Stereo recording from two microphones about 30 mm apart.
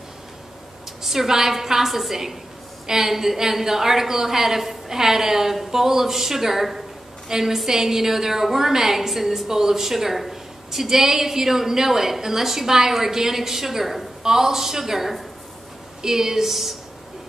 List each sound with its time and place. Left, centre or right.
1.0 s a woman's voice: centre